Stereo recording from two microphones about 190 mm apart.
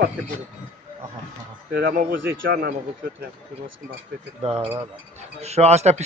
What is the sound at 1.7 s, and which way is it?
Speech, 55° right (ahead or behind).